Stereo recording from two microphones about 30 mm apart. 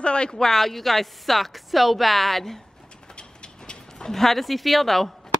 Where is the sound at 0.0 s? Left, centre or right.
Left.